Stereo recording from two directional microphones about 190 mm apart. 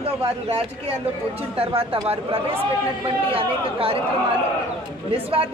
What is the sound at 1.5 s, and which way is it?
Speech, 30° right (ahead or behind).